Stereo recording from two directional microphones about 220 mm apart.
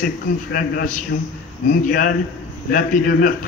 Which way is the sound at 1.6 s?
40° left (ahead or behind).